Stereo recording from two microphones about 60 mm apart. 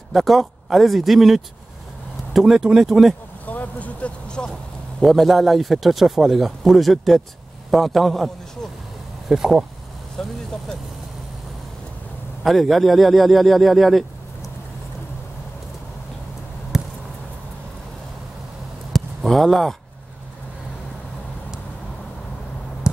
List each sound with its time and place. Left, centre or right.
0.1 s speech: centre
3.4 s vehicle: left
5.0 s speech: centre
9.3 s speech: centre
10.2 s speech: centre
12.4 s speech: centre
16.7 s a sound: centre
18.9 s a sound: centre